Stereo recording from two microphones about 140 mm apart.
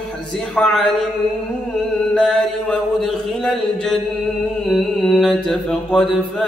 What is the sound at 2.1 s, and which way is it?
Mantra, 5° left (ahead or behind).